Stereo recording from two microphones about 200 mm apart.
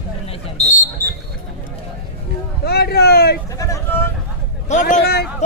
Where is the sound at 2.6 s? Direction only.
50° left (ahead or behind).